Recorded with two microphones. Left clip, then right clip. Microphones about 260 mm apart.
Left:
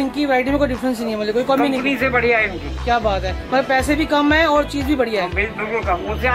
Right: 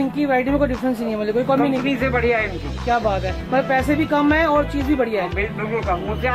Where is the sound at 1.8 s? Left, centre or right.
Centre.